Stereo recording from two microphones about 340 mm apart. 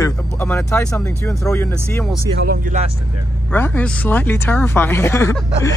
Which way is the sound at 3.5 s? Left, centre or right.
Centre.